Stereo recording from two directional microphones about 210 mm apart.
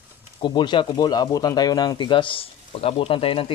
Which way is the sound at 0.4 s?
20° left (ahead or behind).